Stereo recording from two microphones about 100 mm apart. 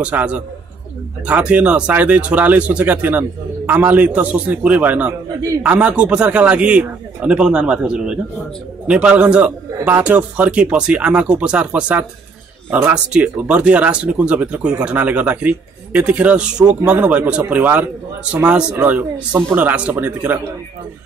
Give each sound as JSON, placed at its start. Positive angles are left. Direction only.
{"t": 0.0, "sound": "speech", "side_deg": -15}